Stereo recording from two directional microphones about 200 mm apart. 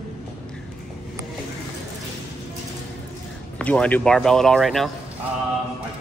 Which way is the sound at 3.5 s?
5° left (ahead or behind).